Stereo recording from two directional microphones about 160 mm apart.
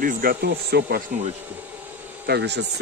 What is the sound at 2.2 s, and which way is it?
Speech, 90° right.